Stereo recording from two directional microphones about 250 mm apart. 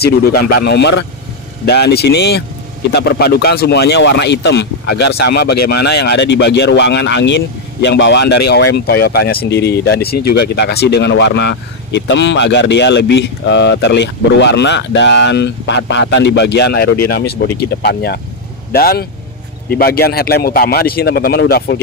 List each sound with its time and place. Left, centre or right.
0.0 s a man's voice: left
10.1 s speech: left
10.4 s a man's voice: left